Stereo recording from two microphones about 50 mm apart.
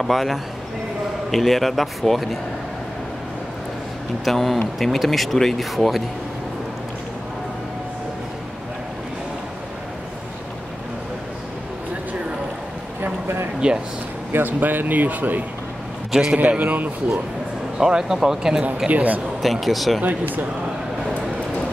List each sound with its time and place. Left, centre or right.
0.0 s speech: centre
4.2 s speech: centre
13.0 s a sound: right
14.3 s speech: right
16.1 s a man's voice: centre
16.3 s speech: right
17.7 s speech: centre
18.9 s speech: right
19.4 s speech: centre